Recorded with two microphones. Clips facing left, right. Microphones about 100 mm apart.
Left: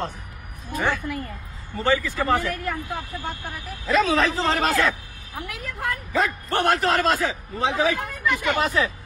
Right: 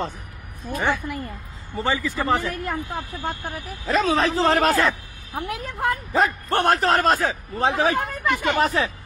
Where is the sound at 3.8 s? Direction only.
35° right (ahead or behind).